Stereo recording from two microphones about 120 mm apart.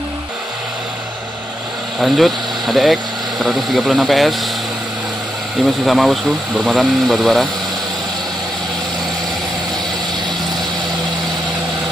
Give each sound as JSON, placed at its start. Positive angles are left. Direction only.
{"t": 2.0, "sound": "speech", "side_deg": 0}
{"t": 5.9, "sound": "speech", "side_deg": 0}